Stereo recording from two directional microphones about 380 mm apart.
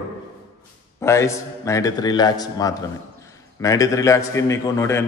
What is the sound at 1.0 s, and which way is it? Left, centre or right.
A man's voice, centre.